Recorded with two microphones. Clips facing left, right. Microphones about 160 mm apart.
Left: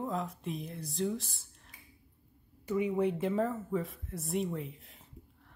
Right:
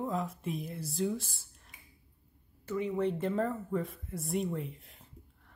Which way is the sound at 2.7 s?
10° left (ahead or behind).